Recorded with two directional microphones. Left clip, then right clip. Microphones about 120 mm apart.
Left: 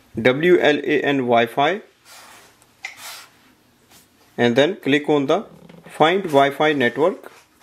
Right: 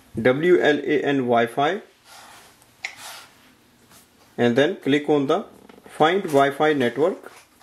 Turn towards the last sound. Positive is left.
turn(degrees=40)  # may be behind; listen again after turning